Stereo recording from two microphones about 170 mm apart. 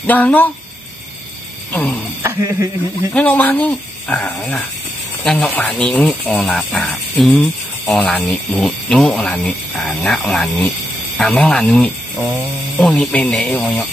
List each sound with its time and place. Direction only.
0.0 s speech: 10° left (ahead or behind)
1.7 s speech: 10° left (ahead or behind)
2.2 s speech: 15° right (ahead or behind)
3.1 s speech: 10° left (ahead or behind)